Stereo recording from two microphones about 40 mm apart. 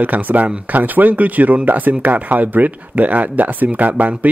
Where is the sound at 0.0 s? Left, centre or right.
Right.